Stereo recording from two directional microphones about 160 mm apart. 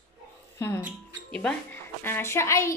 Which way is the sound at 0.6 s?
20° left (ahead or behind).